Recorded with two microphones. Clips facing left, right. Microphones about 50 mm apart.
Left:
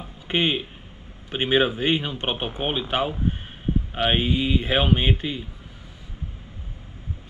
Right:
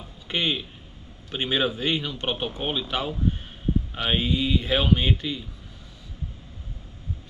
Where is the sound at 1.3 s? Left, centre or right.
Left.